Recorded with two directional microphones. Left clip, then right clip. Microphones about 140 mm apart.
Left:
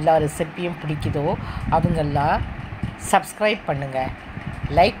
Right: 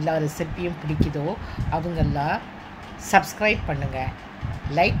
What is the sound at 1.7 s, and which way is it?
A woman's voice, 15° left (ahead or behind).